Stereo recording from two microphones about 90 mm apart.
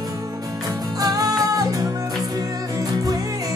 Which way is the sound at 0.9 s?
45° right (ahead or behind).